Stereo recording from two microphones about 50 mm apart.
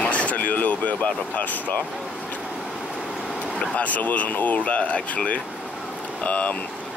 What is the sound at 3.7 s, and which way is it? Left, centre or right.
Speech, left.